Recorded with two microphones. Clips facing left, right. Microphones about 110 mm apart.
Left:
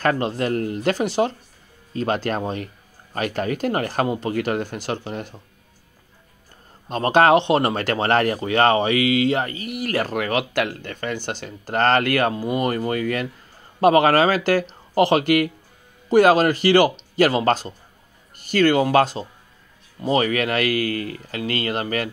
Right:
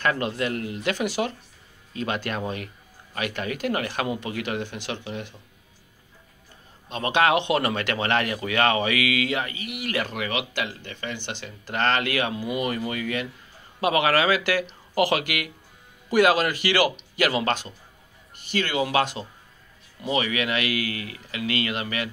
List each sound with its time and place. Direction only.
0.0 s speech: 40° left (ahead or behind)
6.9 s speech: 40° left (ahead or behind)